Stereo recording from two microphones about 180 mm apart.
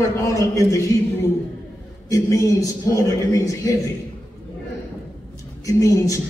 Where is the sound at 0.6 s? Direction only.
15° left (ahead or behind).